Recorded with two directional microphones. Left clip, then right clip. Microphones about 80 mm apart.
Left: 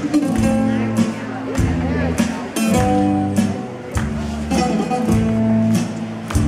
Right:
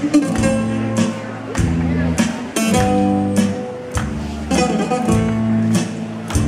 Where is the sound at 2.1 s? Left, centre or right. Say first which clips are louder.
Right 1 dB; right.